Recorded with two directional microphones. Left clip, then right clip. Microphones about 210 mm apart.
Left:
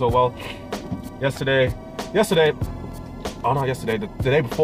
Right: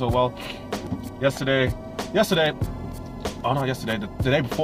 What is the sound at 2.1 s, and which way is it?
Speech, 15° right (ahead or behind).